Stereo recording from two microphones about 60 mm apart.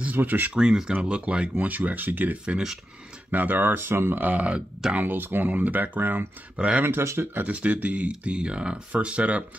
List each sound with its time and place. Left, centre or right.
0.0 s speech: right
0.6 s speech: centre
1.6 s speech: right
2.4 s speech: centre
3.3 s speech: right
5.0 s speech: right
6.8 s speech: right
7.4 s speech: right